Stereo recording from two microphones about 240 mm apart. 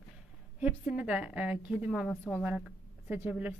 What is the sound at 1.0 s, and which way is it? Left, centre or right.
Speech, centre.